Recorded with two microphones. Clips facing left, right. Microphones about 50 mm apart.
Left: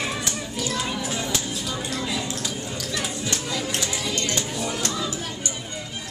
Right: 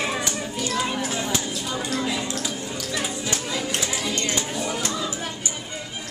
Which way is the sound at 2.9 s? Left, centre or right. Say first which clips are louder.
Right 1 dB; centre.